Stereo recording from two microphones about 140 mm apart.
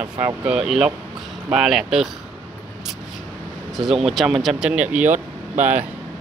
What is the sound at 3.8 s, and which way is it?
Speech, centre (ahead or behind).